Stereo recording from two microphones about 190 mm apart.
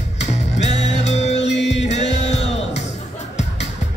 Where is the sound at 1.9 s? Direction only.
35° left (ahead or behind).